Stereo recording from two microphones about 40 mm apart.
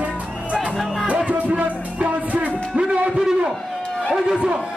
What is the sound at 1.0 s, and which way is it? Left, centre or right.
Music, right.